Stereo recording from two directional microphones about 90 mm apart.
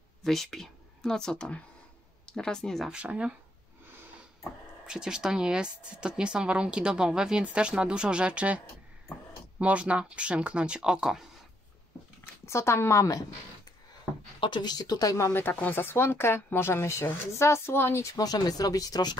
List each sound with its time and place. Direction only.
0.2 s speech: centre (ahead or behind)
2.9 s speech: 10° right (ahead or behind)
4.8 s speech: 10° right (ahead or behind)
9.6 s speech: 15° right (ahead or behind)
12.4 s a woman's voice: 30° left (ahead or behind)
14.4 s speech: 55° left (ahead or behind); by 15.3 s 40° left (ahead or behind)
15.3 s speech: 20° left (ahead or behind)
18.1 s speech: 45° left (ahead or behind)